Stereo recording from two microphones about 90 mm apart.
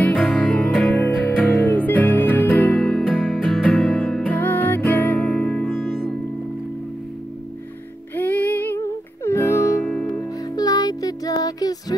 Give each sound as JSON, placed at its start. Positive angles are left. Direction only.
{"t": 0.0, "sound": "music", "side_deg": 15}
{"t": 3.2, "sound": "music", "side_deg": -5}
{"t": 3.5, "sound": "music", "side_deg": 10}
{"t": 8.2, "sound": "music", "side_deg": 20}
{"t": 8.7, "sound": "music", "side_deg": 30}
{"t": 9.8, "sound": "music", "side_deg": 15}
{"t": 10.5, "sound": "music", "side_deg": 45}